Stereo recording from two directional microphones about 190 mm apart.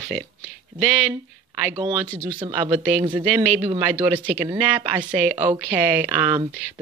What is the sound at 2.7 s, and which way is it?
A man's voice, 10° right (ahead or behind).